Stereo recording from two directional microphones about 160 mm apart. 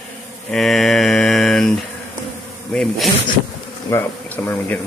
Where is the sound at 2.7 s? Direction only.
5° left (ahead or behind).